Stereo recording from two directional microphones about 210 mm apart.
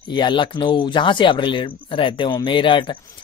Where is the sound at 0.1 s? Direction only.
20° left (ahead or behind).